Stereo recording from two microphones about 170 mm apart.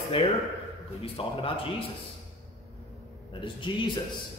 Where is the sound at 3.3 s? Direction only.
30° left (ahead or behind).